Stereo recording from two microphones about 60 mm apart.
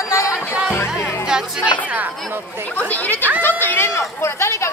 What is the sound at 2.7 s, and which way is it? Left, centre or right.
Speech, left.